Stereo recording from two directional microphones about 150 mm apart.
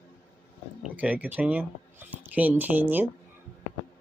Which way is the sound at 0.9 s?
10° right (ahead or behind).